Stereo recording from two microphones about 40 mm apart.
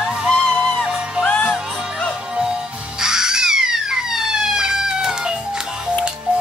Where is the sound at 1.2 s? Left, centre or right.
Left.